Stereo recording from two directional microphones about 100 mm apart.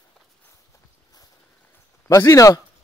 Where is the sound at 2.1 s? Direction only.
35° left (ahead or behind).